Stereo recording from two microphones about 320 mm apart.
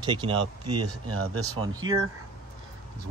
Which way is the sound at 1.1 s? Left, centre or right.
Right.